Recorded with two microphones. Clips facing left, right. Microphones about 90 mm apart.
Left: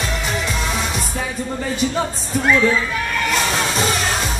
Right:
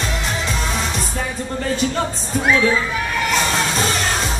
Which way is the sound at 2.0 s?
5° right (ahead or behind).